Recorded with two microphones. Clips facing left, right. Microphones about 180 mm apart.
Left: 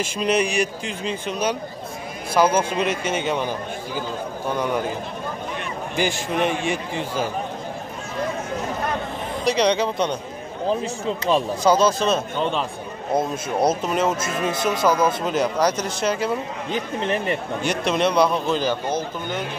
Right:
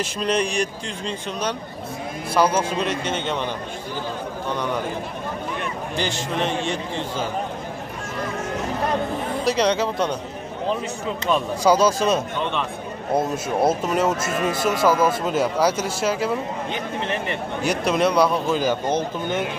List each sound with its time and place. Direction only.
0.0 s a man's voice: 5° left (ahead or behind)
5.9 s a man's voice: 10° left (ahead or behind)
9.4 s speech: 5° right (ahead or behind)
11.1 s speech: 30° left (ahead or behind)
11.6 s speech: 10° right (ahead or behind)
16.7 s speech: 40° left (ahead or behind)
17.6 s speech: centre (ahead or behind)